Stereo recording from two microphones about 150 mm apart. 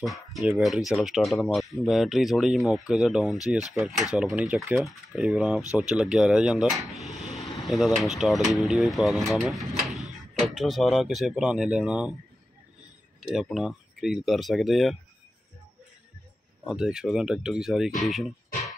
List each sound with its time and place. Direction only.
0.0 s speech: centre (ahead or behind)
13.3 s speech: centre (ahead or behind)
16.6 s speech: 5° right (ahead or behind)